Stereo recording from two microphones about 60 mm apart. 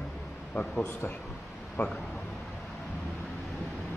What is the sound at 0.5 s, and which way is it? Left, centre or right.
Speech, left.